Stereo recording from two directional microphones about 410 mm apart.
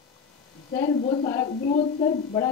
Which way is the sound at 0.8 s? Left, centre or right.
Centre.